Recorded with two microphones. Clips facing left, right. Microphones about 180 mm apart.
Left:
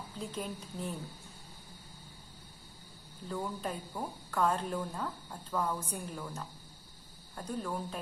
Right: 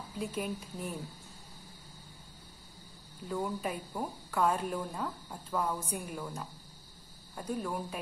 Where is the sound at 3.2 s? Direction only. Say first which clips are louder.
Right 3 dB; 10° right (ahead or behind).